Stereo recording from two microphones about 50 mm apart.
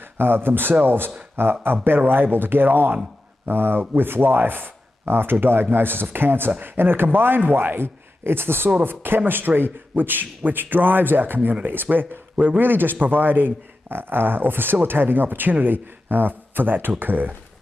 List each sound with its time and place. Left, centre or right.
0.2 s speech: right